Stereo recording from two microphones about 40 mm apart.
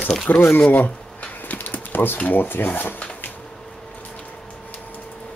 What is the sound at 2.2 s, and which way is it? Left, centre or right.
Speech, left.